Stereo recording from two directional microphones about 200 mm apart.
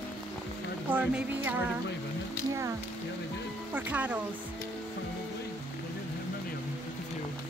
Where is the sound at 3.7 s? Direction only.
5° right (ahead or behind).